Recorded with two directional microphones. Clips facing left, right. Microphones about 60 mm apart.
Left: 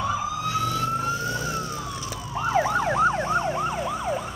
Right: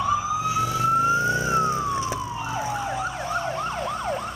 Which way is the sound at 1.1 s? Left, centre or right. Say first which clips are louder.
Right 6 dB; right.